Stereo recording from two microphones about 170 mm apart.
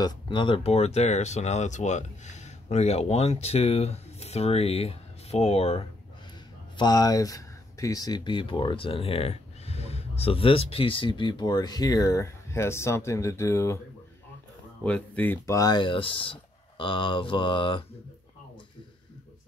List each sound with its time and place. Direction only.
0.0 s speech: 30° left (ahead or behind)
6.8 s speech: 25° left (ahead or behind)
14.8 s speech: 10° left (ahead or behind); by 17.8 s 30° left (ahead or behind)